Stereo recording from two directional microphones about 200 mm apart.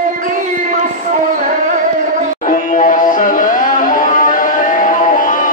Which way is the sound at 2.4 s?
40° left (ahead or behind).